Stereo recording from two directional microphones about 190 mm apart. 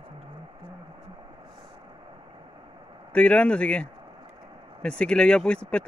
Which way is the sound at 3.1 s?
5° left (ahead or behind).